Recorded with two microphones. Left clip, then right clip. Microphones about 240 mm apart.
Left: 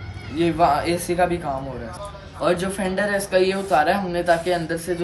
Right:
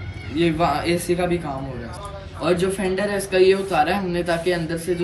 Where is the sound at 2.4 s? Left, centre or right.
Centre.